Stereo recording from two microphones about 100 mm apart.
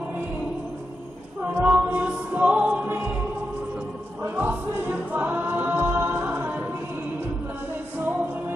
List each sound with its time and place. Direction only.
1.6 s music: 10° right (ahead or behind)
4.2 s music: 20° right (ahead or behind)